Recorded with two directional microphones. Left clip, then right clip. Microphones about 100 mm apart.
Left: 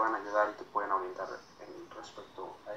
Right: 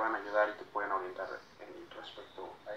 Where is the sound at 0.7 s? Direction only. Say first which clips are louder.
Left 3 dB; 5° left (ahead or behind).